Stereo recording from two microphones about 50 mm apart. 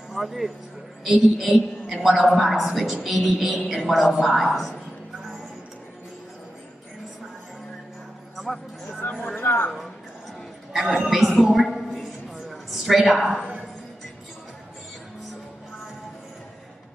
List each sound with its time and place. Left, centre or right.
0.1 s a woman's voice: centre
9.2 s speech: left
10.7 s a sound: centre